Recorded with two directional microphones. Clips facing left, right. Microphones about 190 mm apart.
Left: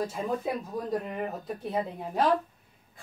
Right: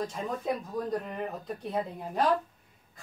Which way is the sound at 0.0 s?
5° left (ahead or behind).